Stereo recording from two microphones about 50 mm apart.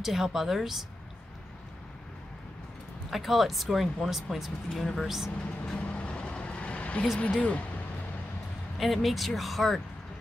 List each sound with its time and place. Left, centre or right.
0.0 s speech: centre
3.1 s speech: centre
5.8 s vehicle: left
7.2 s speech: left
8.7 s speech: centre